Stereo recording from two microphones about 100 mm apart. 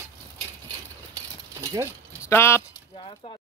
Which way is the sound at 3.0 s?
70° left (ahead or behind).